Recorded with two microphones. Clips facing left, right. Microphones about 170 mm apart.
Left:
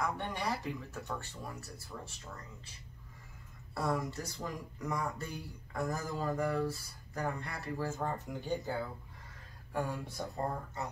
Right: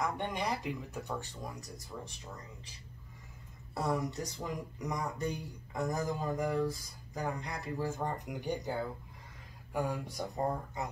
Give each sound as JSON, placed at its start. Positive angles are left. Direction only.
{"t": 0.0, "sound": "speech", "side_deg": -15}
{"t": 3.7, "sound": "speech", "side_deg": -20}